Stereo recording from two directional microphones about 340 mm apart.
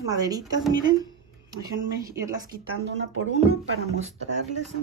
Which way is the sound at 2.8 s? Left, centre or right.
Right.